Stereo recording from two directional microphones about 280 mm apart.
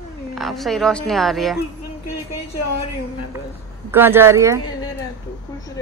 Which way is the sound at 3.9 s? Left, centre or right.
Centre.